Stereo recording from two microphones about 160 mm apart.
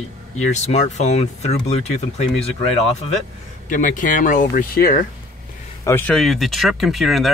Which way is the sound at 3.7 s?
55° left (ahead or behind).